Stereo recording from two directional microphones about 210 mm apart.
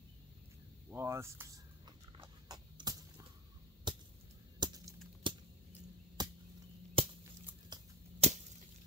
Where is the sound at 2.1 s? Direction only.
20° right (ahead or behind).